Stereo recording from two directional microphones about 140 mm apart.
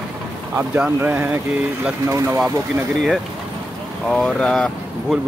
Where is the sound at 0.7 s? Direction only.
10° right (ahead or behind).